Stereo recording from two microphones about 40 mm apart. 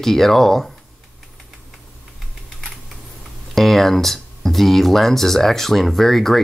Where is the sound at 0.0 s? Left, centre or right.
Centre.